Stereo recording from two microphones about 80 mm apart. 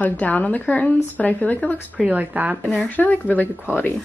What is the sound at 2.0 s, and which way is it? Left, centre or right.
Speech, centre.